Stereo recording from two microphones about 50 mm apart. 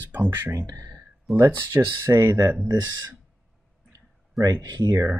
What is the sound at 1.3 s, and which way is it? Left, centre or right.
Speech, right.